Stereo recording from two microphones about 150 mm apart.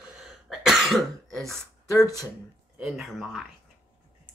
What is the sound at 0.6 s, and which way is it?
Cough, centre (ahead or behind).